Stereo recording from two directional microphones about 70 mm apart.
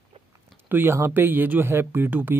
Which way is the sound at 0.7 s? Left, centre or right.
Right.